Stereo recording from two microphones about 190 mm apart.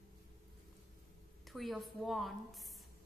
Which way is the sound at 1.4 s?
Centre (ahead or behind).